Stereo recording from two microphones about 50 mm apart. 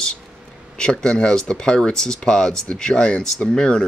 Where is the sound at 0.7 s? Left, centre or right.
Centre.